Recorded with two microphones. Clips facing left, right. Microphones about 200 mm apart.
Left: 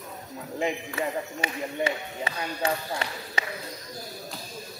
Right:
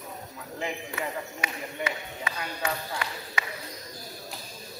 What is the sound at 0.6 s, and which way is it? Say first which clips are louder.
Speech: left 5 dB; 25° left (ahead or behind).